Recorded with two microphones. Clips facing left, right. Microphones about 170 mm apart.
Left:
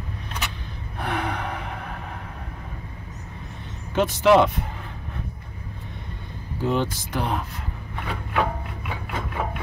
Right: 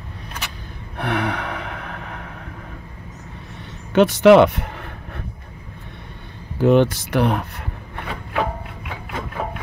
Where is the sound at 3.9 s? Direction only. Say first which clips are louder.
Right 6 dB; 75° right (ahead or behind).